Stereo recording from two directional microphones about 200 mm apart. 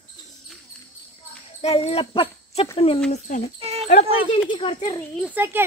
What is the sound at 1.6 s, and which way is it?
A child's voice, 30° left (ahead or behind).